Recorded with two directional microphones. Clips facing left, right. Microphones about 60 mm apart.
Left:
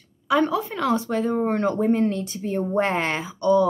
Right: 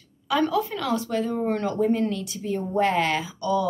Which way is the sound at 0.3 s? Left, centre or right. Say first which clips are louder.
Left 2 dB; left.